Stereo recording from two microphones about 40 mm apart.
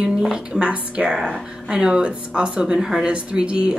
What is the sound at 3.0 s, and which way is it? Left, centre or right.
Speech, right.